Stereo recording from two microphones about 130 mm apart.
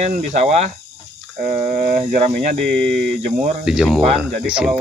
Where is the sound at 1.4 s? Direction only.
90° right.